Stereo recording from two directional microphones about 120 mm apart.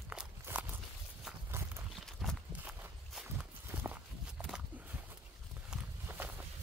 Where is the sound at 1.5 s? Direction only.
20° right (ahead or behind).